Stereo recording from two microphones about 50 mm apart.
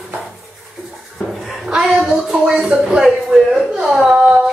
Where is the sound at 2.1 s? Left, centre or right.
Centre.